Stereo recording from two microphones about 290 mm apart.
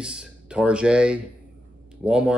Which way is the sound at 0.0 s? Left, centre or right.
Centre.